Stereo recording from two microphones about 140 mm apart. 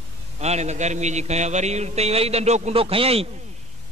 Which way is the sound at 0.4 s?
50° right (ahead or behind).